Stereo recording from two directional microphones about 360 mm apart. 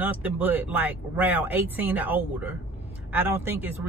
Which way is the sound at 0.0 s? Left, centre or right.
Centre.